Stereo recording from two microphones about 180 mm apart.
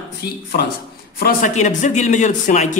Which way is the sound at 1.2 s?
45° left (ahead or behind).